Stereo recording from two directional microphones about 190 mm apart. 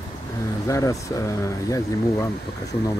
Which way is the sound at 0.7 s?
15° left (ahead or behind).